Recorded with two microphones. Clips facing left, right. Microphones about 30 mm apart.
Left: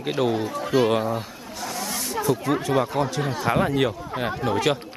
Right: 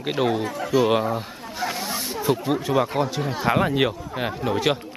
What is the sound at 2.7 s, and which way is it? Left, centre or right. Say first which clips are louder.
Speech: right 2 dB; centre.